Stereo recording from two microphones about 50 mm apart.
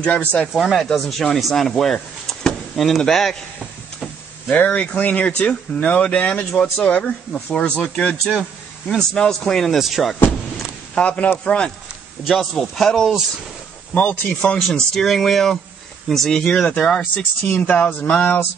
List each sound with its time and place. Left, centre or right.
0.0 s speech: left
0.5 s speech: centre
4.5 s speech: left; by 9.8 s centre
9.8 s speech: centre
11.0 s speech: left
12.3 s speech: centre
13.9 s speech: left
14.6 s speech: centre
17.0 s speech: left